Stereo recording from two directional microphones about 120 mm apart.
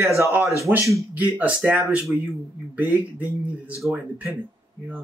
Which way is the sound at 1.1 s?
15° right (ahead or behind).